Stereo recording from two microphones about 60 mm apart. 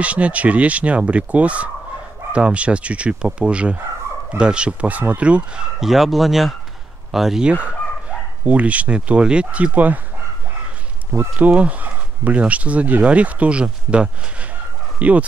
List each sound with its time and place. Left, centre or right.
0.0 s speech: right
5.8 s speech: centre
8.5 s speech: right
11.3 s speech: right